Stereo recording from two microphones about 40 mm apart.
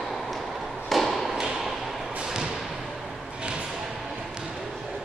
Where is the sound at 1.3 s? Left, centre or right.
Centre.